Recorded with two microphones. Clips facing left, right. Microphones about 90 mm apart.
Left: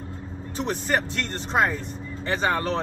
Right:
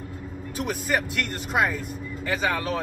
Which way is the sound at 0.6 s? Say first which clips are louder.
Left 1 dB; 35° left (ahead or behind).